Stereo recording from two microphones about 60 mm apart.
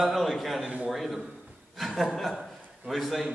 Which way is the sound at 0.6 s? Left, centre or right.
Centre.